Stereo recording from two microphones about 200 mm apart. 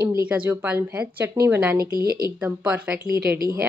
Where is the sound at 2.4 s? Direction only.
10° right (ahead or behind).